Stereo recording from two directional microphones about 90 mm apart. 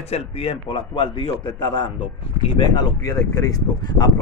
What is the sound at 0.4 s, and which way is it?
Speech, 85° left.